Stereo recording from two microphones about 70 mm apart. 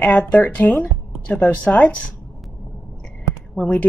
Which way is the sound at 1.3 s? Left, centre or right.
Centre.